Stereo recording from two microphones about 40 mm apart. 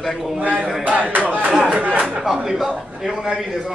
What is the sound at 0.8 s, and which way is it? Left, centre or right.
Speech, right.